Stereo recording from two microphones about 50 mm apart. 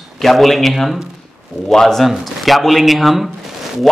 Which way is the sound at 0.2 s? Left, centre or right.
Centre.